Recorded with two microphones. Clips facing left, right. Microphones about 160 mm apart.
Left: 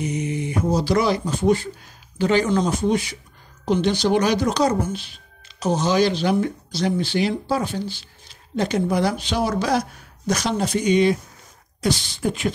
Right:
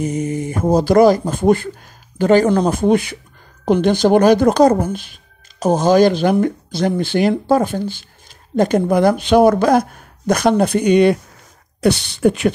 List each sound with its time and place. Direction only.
0.0 s speech: 45° right (ahead or behind); by 12.5 s 65° right (ahead or behind)